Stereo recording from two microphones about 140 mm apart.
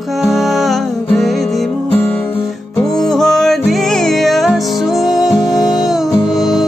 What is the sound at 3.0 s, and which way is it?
Music, 5° left (ahead or behind).